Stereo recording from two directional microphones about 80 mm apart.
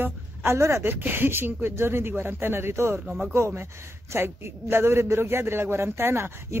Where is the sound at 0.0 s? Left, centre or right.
Right.